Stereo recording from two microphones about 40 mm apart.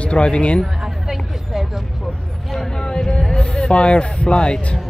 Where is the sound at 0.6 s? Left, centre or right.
Centre.